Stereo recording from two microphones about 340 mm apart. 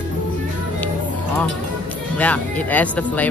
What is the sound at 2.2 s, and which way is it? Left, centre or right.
Speech, centre.